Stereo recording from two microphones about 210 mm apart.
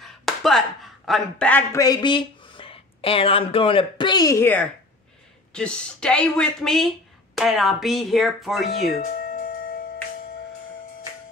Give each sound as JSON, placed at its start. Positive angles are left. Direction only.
{"t": 0.0, "sound": "speech", "side_deg": 0}
{"t": 9.2, "sound": "music", "side_deg": 45}